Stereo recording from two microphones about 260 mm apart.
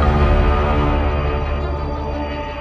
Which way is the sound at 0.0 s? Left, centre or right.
Centre.